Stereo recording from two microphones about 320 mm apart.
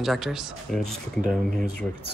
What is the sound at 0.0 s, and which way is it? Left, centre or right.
Speech, centre.